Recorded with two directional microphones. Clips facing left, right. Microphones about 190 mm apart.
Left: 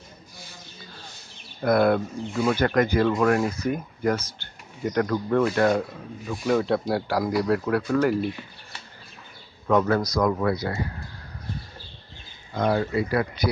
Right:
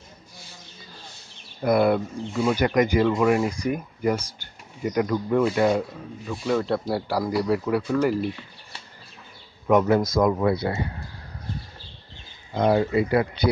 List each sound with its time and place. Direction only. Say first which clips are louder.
1.6 s speech: even; 10° right (ahead or behind)
9.7 s speech: right 2 dB; 20° right (ahead or behind)
12.5 s speech: right 3 dB; 25° right (ahead or behind)